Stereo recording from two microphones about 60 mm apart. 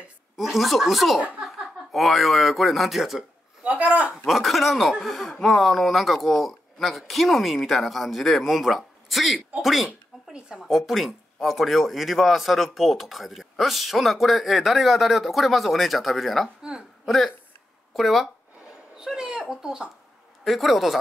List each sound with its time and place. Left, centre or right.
0.4 s speech: centre
3.6 s a woman's voice: right
4.3 s speech: centre
9.8 s a sound: centre
10.7 s speech: centre
18.9 s a sound: centre
20.4 s speech: centre